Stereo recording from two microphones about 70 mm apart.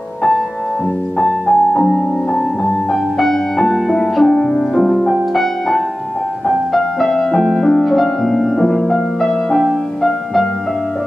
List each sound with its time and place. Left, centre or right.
1.2 s music: centre